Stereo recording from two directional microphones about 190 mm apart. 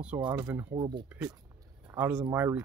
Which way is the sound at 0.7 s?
20° right (ahead or behind).